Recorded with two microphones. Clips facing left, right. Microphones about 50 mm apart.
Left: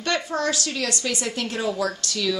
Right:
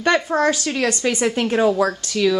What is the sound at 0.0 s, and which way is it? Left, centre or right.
Speech, right.